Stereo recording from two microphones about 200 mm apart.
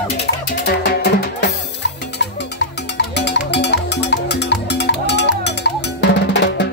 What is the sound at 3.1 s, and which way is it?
Music, 60° left (ahead or behind).